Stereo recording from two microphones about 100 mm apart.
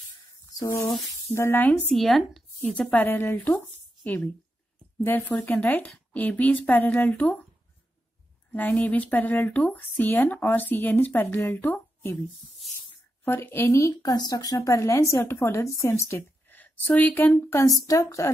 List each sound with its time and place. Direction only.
0.6 s a woman's voice: 30° left (ahead or behind)
1.9 s speech: centre (ahead or behind)
2.6 s a woman's voice: 15° left (ahead or behind)
8.5 s a woman's voice: 15° left (ahead or behind)
13.2 s a woman's voice: 20° left (ahead or behind)
14.1 s a woman's voice: 40° left (ahead or behind); by 17.3 s 20° left (ahead or behind)
17.5 s a woman's voice: 30° left (ahead or behind)